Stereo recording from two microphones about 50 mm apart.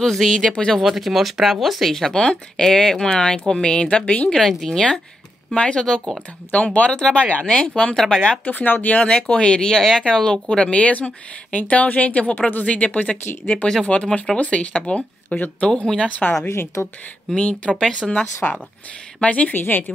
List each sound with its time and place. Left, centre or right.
0.0 s speech: centre
0.7 s speech: centre; by 4.3 s left
4.3 s speech: centre
5.6 s speech: left
8.5 s speech: left; by 10.4 s centre
10.5 s speech: left
16.1 s speech: left
17.5 s a woman's voice: left